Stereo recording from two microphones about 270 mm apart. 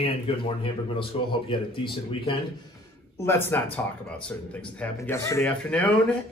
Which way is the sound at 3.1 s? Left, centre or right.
Centre.